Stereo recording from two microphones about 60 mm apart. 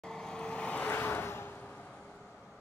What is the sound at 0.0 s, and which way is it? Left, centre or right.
Vehicle, centre.